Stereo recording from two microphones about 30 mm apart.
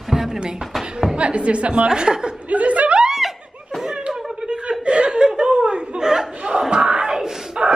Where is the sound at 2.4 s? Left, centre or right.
Right.